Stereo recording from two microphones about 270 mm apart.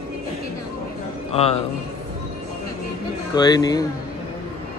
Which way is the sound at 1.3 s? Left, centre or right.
Left.